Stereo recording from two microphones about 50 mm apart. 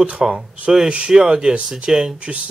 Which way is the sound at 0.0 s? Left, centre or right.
Right.